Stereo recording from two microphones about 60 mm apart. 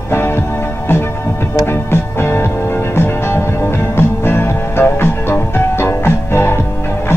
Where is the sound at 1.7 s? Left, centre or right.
Left.